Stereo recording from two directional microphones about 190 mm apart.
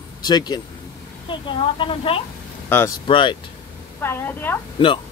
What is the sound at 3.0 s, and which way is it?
Speech, 25° left (ahead or behind).